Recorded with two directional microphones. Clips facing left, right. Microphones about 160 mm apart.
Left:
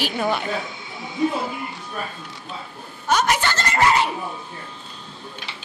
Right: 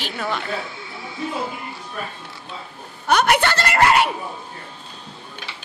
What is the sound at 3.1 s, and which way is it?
Speech, 60° right (ahead or behind).